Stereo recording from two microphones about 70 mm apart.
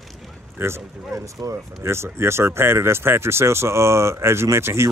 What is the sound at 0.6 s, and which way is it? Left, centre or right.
Speech, right.